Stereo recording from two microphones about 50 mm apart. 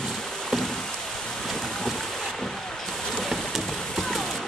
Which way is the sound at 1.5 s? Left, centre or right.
Centre.